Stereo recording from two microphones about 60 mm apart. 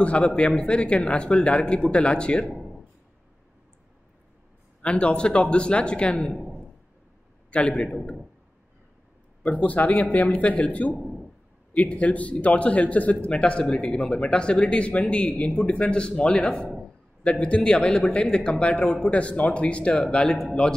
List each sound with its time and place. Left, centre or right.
0.0 s speech: centre
4.8 s speech: centre
6.3 s a sound: centre
7.5 s speech: centre
9.4 s a man's voice: left
11.0 s a sound: centre
11.7 s a man's voice: left